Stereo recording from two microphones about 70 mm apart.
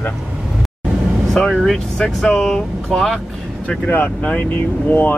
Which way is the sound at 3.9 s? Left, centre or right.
Left.